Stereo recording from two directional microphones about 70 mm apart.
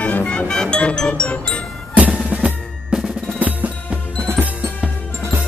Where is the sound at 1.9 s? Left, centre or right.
Centre.